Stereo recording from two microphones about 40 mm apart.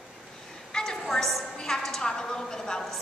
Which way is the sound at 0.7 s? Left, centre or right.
Centre.